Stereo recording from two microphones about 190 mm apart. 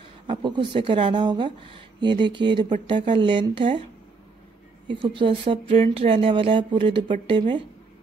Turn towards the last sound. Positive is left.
turn(degrees=-25)  # may be behind; listen again after turning